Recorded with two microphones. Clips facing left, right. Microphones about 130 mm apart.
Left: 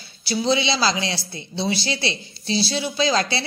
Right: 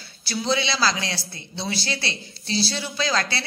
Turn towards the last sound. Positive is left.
turn(degrees=20)  # may be behind; listen again after turning